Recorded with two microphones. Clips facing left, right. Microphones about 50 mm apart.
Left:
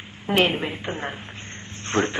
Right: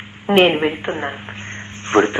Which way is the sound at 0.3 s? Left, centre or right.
Right.